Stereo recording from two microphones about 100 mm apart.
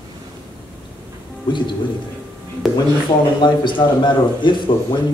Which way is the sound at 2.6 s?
Centre (ahead or behind).